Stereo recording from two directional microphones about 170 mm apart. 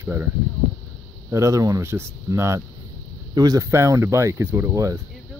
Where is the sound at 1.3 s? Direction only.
20° right (ahead or behind).